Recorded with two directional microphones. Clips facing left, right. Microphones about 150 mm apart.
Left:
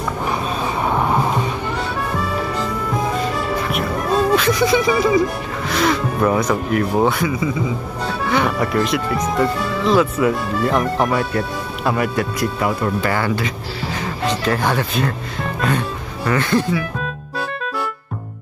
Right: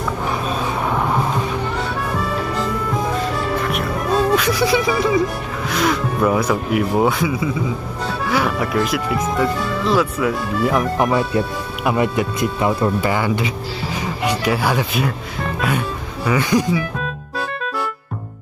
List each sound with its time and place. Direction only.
3.6 s music: centre (ahead or behind)
5.7 s speech: centre (ahead or behind)
11.0 s speech: 20° right (ahead or behind)
16.3 s speech: 15° right (ahead or behind)